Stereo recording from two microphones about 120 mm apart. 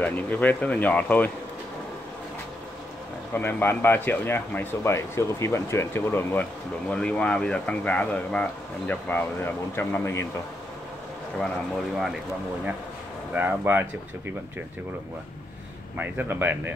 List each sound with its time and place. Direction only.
0.0 s speech: 15° left (ahead or behind)
3.3 s speech: 15° left (ahead or behind)
6.9 s speech: 10° left (ahead or behind)
9.8 s speech: 20° left (ahead or behind)
11.3 s speech: centre (ahead or behind)
13.3 s speech: 15° right (ahead or behind)
16.0 s speech: 15° right (ahead or behind)